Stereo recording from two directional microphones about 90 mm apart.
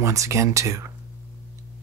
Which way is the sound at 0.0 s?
35° right (ahead or behind).